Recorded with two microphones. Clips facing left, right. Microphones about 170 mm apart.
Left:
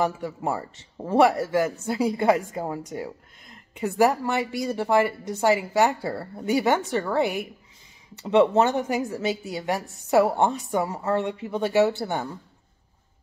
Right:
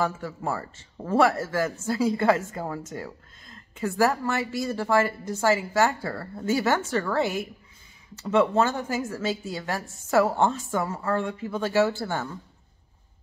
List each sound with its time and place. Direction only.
0.0 s a woman's voice: 20° left (ahead or behind)
9.8 s a woman's voice: 65° left (ahead or behind)
10.1 s a woman's voice: 15° left (ahead or behind)